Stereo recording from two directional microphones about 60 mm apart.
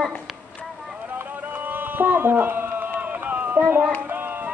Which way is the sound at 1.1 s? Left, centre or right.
Right.